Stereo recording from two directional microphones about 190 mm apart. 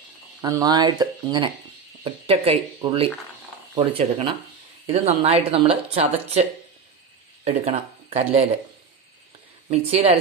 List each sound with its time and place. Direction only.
0.4 s speech: 20° right (ahead or behind)
7.4 s speech: 35° right (ahead or behind)
9.7 s speech: 35° right (ahead or behind)